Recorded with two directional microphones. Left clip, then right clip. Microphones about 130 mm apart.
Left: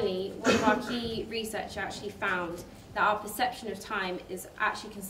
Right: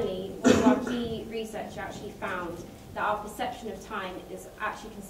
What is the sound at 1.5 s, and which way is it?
A woman's voice, 25° left (ahead or behind).